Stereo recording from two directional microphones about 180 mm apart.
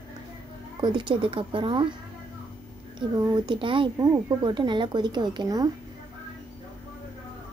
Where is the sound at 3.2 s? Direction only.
25° right (ahead or behind).